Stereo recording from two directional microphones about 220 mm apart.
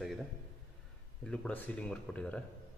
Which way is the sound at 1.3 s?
5° left (ahead or behind).